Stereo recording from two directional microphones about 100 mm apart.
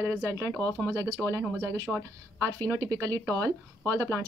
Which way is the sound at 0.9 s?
30° right (ahead or behind).